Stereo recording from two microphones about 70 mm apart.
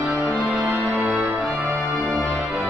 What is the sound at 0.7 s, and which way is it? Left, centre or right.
Music, right.